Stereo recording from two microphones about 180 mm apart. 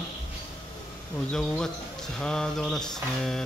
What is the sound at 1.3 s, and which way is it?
Speech, 5° left (ahead or behind).